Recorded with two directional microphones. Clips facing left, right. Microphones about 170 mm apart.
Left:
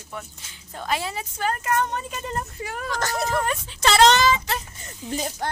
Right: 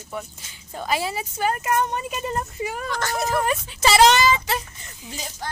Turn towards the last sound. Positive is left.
turn(degrees=50)  # may be behind; listen again after turning